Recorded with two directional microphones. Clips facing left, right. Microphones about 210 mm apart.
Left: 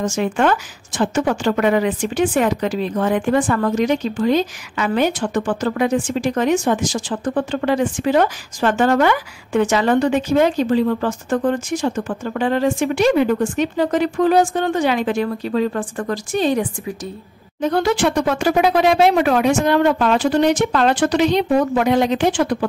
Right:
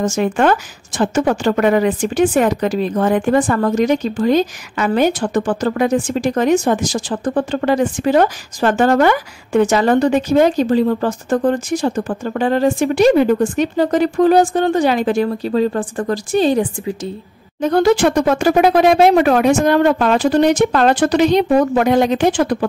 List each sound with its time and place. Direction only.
0.0 s a woman's voice: 45° right (ahead or behind)
17.6 s speech: 45° right (ahead or behind)